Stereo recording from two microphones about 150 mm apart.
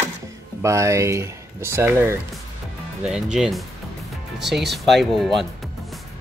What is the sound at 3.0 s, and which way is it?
Speech, 5° right (ahead or behind).